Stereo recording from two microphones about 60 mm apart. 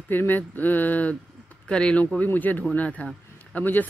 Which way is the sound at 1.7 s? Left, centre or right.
Centre.